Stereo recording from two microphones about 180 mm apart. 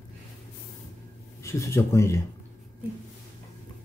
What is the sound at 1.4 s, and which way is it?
Speech, 15° left (ahead or behind).